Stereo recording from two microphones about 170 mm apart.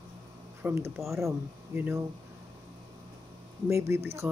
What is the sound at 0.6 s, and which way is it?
Speech, 15° right (ahead or behind).